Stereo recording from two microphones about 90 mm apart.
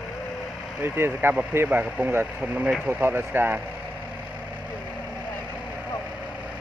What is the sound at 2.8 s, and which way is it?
Speech, 20° right (ahead or behind).